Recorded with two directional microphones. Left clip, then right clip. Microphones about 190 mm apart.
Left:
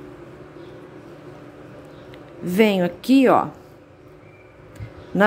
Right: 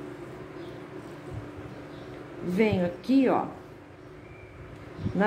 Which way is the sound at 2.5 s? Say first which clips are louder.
Left 8 dB; 50° left (ahead or behind).